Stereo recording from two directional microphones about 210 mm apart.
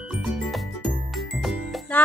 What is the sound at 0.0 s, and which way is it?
Music, centre (ahead or behind).